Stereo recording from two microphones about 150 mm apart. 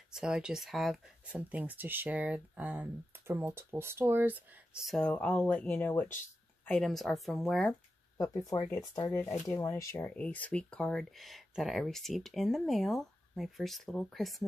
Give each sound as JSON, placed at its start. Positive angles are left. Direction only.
{"t": 0.1, "sound": "speech", "side_deg": -5}
{"t": 8.2, "sound": "speech", "side_deg": 25}